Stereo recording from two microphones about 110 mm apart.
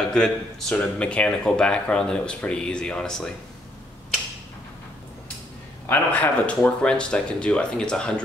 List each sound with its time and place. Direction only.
0.1 s speech: 5° left (ahead or behind)
5.9 s speech: 15° left (ahead or behind)